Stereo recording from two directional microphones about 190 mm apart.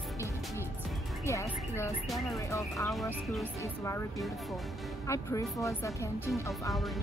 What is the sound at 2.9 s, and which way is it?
Speech, centre (ahead or behind).